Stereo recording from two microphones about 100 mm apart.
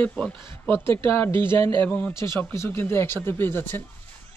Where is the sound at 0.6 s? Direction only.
25° left (ahead or behind).